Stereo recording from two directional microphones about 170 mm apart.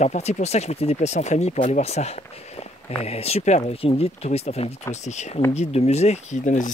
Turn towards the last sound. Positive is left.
turn(degrees=50)  # may be behind; listen again after turning